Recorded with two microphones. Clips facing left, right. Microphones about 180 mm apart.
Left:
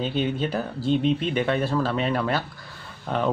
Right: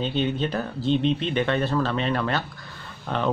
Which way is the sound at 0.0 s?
10° left (ahead or behind).